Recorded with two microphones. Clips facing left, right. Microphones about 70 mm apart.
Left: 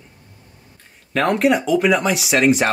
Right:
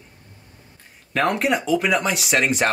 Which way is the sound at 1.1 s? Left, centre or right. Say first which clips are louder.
Left 4 dB; centre.